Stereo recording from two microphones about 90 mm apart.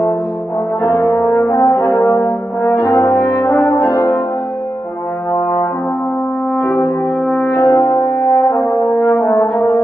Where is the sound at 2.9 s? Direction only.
30° left (ahead or behind).